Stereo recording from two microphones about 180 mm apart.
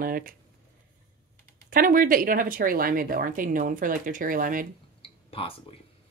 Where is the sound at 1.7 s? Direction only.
50° right (ahead or behind).